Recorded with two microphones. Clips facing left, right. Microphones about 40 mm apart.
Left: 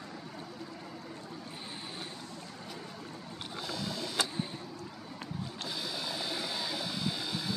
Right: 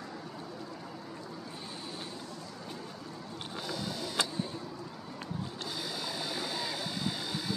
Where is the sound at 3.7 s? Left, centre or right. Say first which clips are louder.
Even; left.